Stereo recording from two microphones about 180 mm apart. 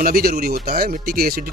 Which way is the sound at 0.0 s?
55° right (ahead or behind).